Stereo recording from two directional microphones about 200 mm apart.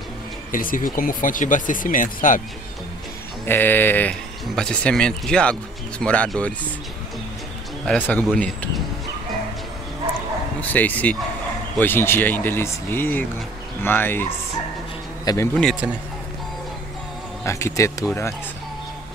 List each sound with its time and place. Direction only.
0.5 s speech: 45° left (ahead or behind)
3.4 s speech: 10° left (ahead or behind)
7.8 s speech: 5° left (ahead or behind)
10.6 s speech: 10° left (ahead or behind)
15.6 s a man's voice: 5° right (ahead or behind)
17.5 s speech: 15° left (ahead or behind)